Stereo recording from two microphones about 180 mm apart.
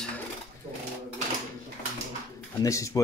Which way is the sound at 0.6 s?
35° right (ahead or behind).